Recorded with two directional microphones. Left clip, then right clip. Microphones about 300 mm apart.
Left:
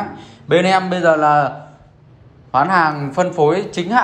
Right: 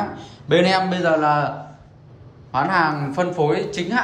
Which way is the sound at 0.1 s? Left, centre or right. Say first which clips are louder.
Left 7 dB; centre.